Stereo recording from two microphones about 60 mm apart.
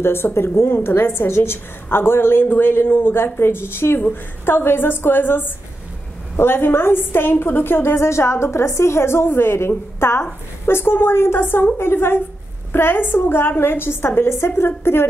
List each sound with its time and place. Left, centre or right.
0.0 s a woman's voice: left